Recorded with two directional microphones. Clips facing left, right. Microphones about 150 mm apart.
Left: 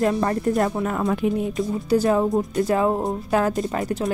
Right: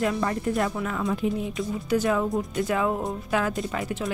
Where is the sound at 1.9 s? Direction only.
35° left (ahead or behind).